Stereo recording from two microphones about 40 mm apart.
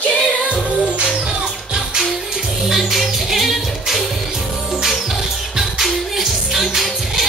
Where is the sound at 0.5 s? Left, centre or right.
Right.